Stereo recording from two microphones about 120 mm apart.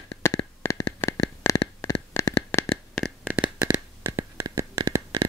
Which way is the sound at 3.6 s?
15° right (ahead or behind).